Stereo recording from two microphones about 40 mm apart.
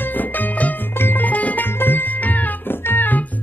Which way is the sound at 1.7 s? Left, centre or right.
Left.